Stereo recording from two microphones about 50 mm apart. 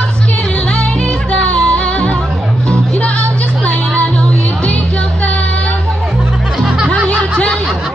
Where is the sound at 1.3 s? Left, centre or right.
Left.